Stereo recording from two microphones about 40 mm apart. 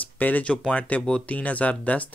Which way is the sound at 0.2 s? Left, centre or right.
Left.